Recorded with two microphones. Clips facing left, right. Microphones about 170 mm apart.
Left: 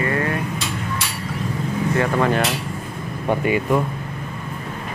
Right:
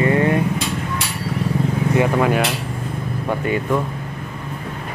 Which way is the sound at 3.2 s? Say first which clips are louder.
Left 2 dB; 15° left (ahead or behind).